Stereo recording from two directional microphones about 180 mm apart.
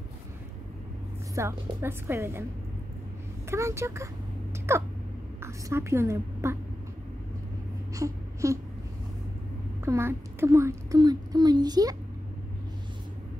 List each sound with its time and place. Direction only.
1.3 s a woman's voice: 15° right (ahead or behind)
3.4 s a woman's voice: 15° right (ahead or behind)
7.9 s a sound: 15° right (ahead or behind)
9.8 s a child's voice: 15° right (ahead or behind)